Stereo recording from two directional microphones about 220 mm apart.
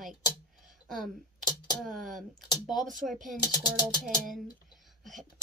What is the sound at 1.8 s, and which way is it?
A woman's voice, centre (ahead or behind).